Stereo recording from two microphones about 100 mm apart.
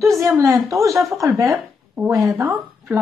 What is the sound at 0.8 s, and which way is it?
Speech, 35° right (ahead or behind).